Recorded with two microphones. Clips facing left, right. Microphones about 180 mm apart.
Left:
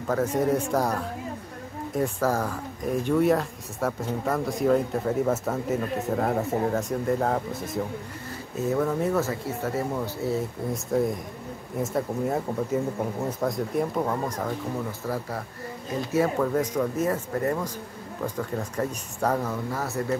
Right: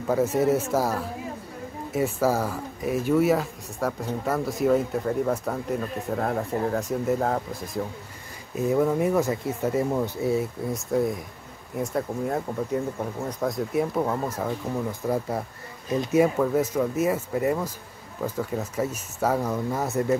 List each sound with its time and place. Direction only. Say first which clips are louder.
0.1 s speech: right 2 dB; 10° right (ahead or behind)
8.5 s speech: right 3 dB; 10° right (ahead or behind)
10.7 s speech: even; centre (ahead or behind)
14.9 s speech: right 4 dB; 20° right (ahead or behind)
16.3 s speech: right 2 dB; 5° right (ahead or behind)
19.7 s speech: right 5 dB; 20° right (ahead or behind)